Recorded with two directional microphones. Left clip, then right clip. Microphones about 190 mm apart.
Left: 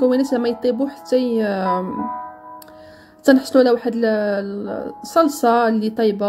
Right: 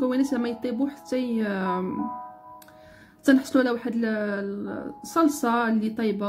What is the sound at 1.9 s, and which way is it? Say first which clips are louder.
Music: left 6 dB; 35° left (ahead or behind).